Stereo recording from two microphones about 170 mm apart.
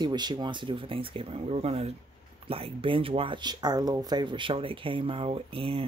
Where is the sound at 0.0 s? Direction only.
25° right (ahead or behind).